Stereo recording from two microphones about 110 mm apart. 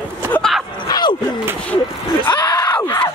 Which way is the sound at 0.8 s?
40° left (ahead or behind).